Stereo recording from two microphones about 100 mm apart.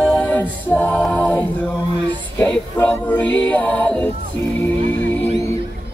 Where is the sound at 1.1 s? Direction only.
20° left (ahead or behind).